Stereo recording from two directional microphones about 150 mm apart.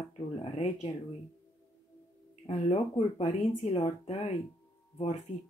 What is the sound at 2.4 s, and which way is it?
Speech, 45° left (ahead or behind).